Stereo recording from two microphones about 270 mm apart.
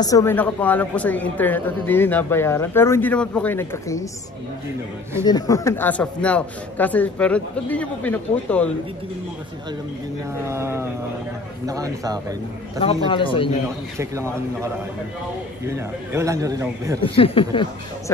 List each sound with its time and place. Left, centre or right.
0.0 s a woman's voice: centre
5.2 s a man's voice: centre
10.4 s a man's voice: centre
12.8 s speech: centre
13.9 s a man's voice: centre
15.7 s a man's voice: centre
17.0 s speech: centre